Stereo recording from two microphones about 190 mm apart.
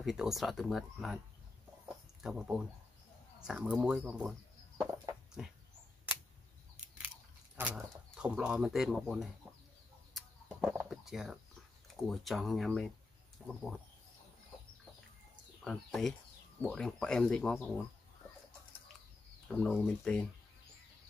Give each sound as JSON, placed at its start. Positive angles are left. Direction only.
{"t": 0.0, "sound": "speech", "side_deg": 0}
{"t": 2.2, "sound": "speech", "side_deg": -5}
{"t": 4.7, "sound": "a sound", "side_deg": -20}
{"t": 5.4, "sound": "speech", "side_deg": -5}
{"t": 7.5, "sound": "speech", "side_deg": -5}
{"t": 10.1, "sound": "bird", "side_deg": -5}
{"t": 12.1, "sound": "speech", "side_deg": 0}
{"t": 15.6, "sound": "speech", "side_deg": 0}
{"t": 19.4, "sound": "speech", "side_deg": 5}